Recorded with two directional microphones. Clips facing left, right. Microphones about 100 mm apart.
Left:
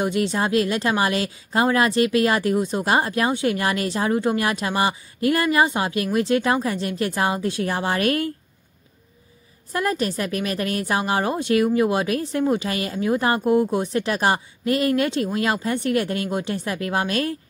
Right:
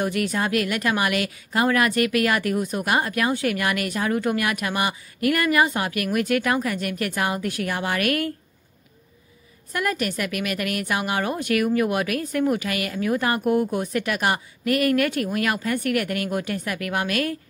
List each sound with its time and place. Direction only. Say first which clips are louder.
0.0 s speech: left 2 dB; 25° left (ahead or behind)
9.7 s speech: left 2 dB; 30° left (ahead or behind)